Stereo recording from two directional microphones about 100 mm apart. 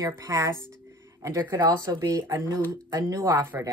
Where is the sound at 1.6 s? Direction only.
45° right (ahead or behind).